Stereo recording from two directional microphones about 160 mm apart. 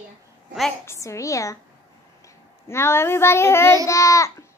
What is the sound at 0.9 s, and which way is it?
Speech, 20° left (ahead or behind).